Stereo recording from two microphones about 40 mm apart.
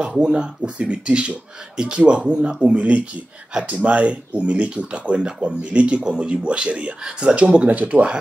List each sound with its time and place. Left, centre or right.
0.0 s speech: right
7.6 s speech: right